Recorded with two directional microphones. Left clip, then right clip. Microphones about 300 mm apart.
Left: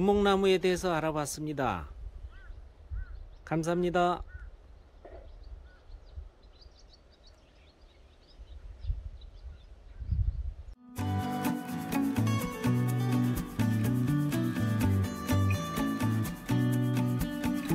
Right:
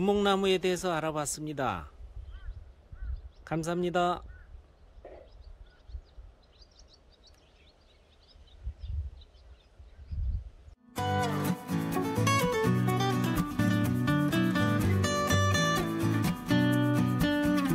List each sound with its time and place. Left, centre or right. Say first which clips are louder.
0.0 s speech: left 1 dB; centre
3.4 s speech: left 2 dB; centre
5.0 s a sound: right 2 dB; right
11.0 s music: right 5 dB; centre